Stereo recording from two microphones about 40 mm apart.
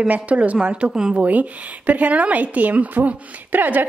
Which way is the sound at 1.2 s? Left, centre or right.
Right.